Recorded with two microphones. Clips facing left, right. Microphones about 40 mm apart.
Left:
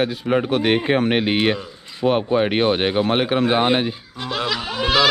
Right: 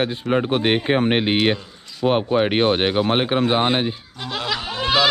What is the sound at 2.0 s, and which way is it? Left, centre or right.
Speech, centre.